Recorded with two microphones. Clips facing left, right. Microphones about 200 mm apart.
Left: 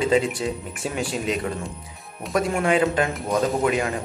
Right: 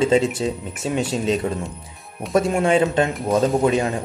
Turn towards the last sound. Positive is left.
turn(degrees=-30)  # may be behind; listen again after turning